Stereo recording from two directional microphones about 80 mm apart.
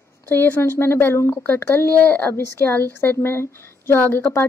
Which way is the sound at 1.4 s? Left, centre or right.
Left.